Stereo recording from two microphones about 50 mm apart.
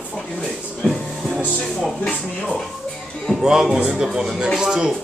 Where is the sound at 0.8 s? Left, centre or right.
Left.